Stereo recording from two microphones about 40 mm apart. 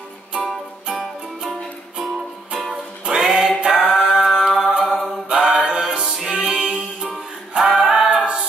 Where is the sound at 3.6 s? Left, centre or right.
Centre.